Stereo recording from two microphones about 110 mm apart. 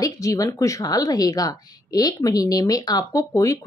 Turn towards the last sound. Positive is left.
turn(degrees=30)  # may be behind; listen again after turning